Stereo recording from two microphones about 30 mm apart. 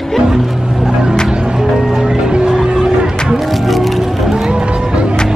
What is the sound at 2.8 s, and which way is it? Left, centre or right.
Music, right.